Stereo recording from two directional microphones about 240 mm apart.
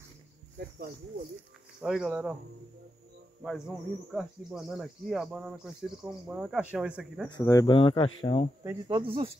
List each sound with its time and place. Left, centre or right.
0.6 s speech: right
1.8 s speech: centre
3.4 s speech: centre
7.2 s speech: centre
8.6 s speech: centre